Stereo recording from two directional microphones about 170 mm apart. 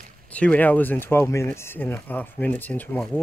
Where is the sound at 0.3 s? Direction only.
10° left (ahead or behind).